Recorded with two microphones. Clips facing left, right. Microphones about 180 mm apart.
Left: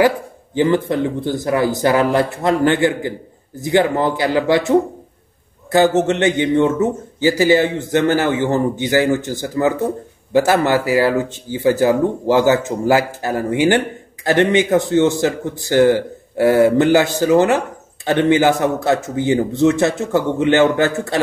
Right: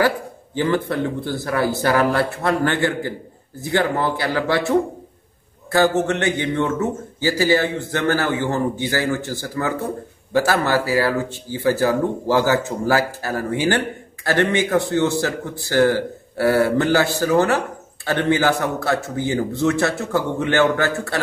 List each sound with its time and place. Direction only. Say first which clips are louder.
0.6 s speech: left 4 dB; 20° left (ahead or behind)